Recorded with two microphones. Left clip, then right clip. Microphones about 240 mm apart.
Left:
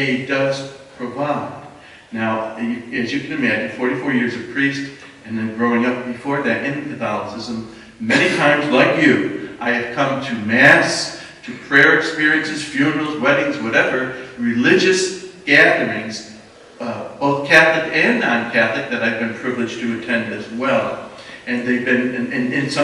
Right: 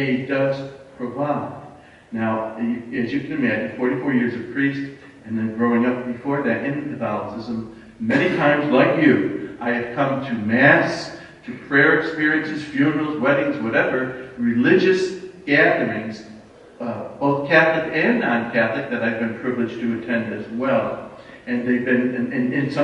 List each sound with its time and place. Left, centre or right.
0.0 s a man's voice: centre
17.2 s a man's voice: centre